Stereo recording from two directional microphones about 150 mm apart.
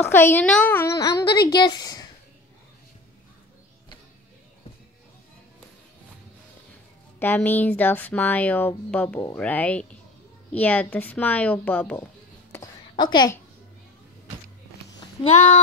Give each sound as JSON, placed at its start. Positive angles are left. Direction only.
{"t": 0.1, "sound": "speech", "side_deg": 15}
{"t": 7.2, "sound": "speech", "side_deg": 10}
{"t": 12.9, "sound": "a woman's voice", "side_deg": 30}
{"t": 15.2, "sound": "speech", "side_deg": 45}